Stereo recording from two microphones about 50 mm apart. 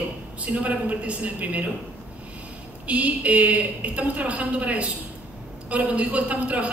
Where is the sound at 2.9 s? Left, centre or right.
Right.